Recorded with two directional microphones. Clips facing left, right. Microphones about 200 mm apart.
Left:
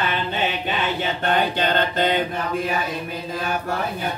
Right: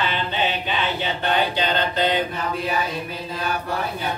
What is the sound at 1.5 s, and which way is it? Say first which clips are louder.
Mantra: left 1 dB; 50° left (ahead or behind).